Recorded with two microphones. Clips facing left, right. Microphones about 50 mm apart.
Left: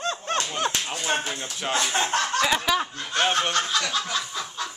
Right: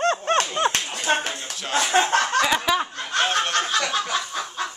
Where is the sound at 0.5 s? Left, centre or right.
Right.